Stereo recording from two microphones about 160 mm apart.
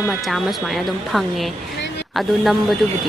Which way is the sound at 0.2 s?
Centre (ahead or behind).